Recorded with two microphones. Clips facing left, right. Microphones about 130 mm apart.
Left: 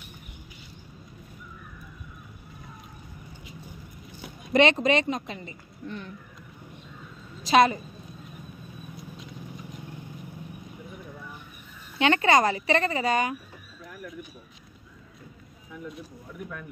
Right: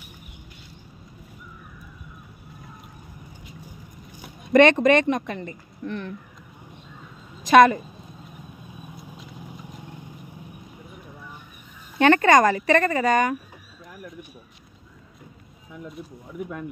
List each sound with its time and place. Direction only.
4.5 s a woman's voice: 50° right (ahead or behind)
5.9 s speech: 70° right (ahead or behind)
7.4 s a woman's voice: 50° right (ahead or behind)
12.0 s a woman's voice: 45° right (ahead or behind)